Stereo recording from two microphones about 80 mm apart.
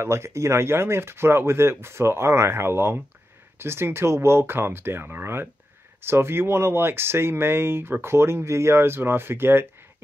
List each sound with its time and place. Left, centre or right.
0.0 s speech: right